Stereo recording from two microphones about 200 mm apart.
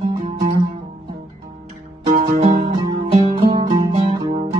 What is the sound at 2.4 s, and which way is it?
Music, 30° right (ahead or behind).